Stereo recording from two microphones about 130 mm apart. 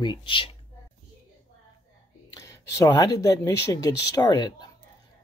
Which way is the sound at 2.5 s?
25° left (ahead or behind).